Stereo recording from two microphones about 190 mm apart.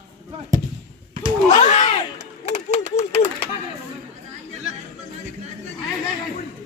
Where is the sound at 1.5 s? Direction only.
40° left (ahead or behind).